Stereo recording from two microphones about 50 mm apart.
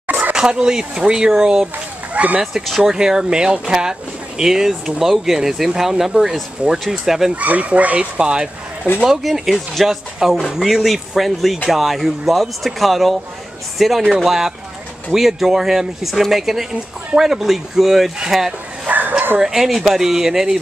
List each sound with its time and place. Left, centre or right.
0.0 s dog: right
0.3 s speech: centre
2.1 s speech: right
2.4 s speech: centre
2.8 s speech: centre
7.3 s speech: right
9.0 s speech: centre
18.9 s bow-wow: right
19.4 s speech: centre